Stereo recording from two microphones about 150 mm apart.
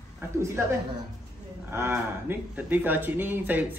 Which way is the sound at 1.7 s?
15° right (ahead or behind).